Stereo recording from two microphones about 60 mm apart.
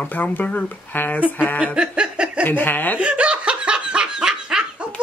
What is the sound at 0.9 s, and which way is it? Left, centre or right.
Speech, left.